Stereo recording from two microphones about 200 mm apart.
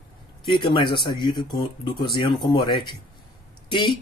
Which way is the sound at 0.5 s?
25° left (ahead or behind).